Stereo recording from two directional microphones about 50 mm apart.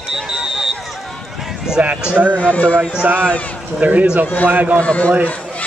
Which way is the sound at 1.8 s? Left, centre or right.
Right.